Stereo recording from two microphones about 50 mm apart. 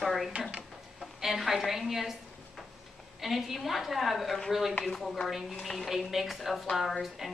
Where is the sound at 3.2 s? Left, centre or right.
Centre.